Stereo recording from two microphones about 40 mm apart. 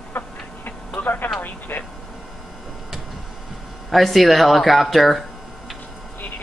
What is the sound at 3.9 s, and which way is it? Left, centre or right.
Speech, centre.